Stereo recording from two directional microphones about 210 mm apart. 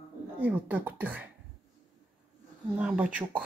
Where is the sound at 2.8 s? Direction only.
5° right (ahead or behind).